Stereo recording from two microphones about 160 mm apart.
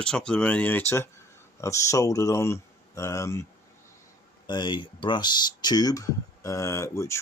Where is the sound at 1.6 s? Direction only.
20° left (ahead or behind).